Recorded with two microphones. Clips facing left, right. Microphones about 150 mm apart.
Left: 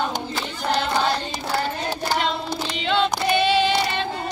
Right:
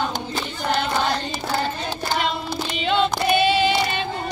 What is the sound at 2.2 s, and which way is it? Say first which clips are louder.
Child singing: even; 5° right (ahead or behind).